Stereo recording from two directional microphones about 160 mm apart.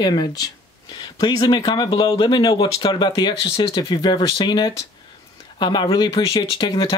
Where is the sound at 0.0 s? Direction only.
30° left (ahead or behind).